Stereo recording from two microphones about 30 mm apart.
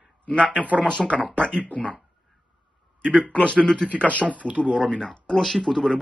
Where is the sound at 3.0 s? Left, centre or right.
Right.